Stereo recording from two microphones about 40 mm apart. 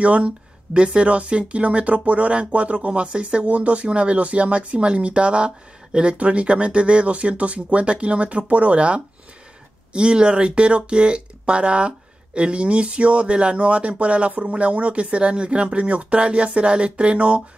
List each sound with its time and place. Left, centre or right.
0.0 s speech: right